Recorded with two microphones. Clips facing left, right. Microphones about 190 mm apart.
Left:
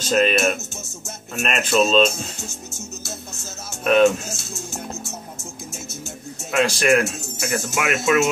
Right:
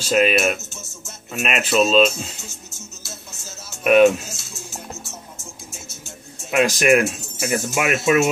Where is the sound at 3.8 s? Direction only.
10° right (ahead or behind).